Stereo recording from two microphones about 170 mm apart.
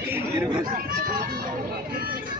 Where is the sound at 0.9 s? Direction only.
55° right (ahead or behind).